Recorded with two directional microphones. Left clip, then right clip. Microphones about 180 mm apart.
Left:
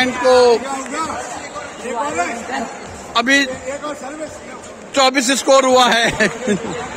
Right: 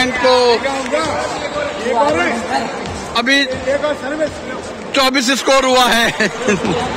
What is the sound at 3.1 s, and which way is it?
Speech, 25° left (ahead or behind).